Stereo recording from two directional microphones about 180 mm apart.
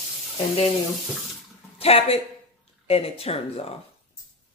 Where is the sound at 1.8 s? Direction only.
35° left (ahead or behind).